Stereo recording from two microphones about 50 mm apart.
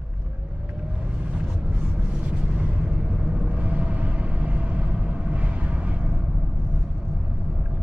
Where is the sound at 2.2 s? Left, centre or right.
Right.